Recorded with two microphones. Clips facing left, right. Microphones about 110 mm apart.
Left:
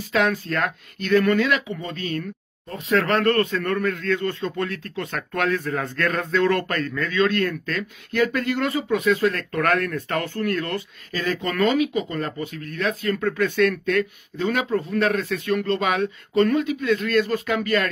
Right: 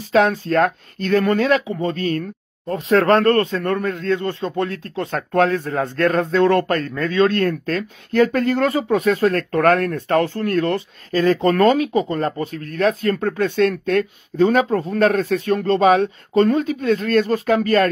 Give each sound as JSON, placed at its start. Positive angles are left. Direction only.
{"t": 0.1, "sound": "speech", "side_deg": -35}